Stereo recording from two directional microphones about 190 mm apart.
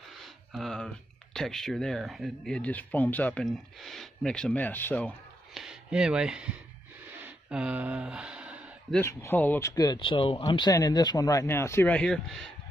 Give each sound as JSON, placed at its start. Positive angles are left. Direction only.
{"t": 0.2, "sound": "speech", "side_deg": 0}
{"t": 7.2, "sound": "a sound", "side_deg": -5}
{"t": 8.9, "sound": "speech", "side_deg": 10}